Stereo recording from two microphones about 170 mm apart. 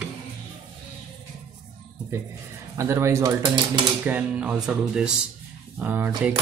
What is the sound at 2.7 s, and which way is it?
Speech, 15° right (ahead or behind).